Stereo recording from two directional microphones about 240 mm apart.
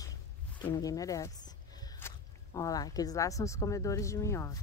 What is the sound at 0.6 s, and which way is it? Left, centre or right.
Speech, centre.